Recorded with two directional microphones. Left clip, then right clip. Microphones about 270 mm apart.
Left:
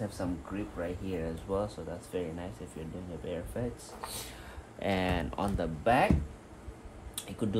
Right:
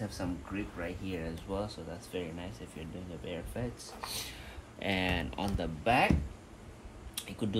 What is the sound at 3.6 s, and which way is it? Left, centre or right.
Speech, centre.